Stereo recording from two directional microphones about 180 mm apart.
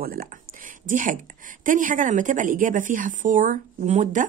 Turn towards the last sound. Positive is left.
turn(degrees=-45)  # may be behind; listen again after turning